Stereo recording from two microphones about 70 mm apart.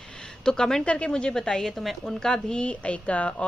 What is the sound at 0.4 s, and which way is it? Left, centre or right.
A woman's voice, centre.